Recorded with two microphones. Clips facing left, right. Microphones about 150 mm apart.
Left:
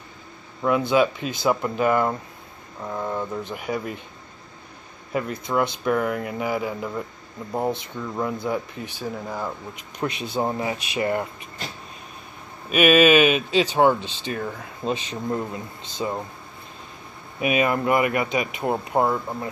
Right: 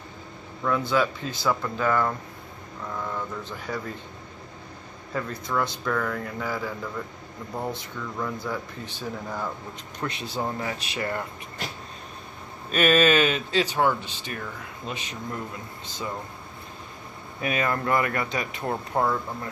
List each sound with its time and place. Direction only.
0.6 s speech: 20° left (ahead or behind)
5.1 s speech: 20° left (ahead or behind)
12.6 s speech: 10° left (ahead or behind)
17.4 s speech: 15° left (ahead or behind)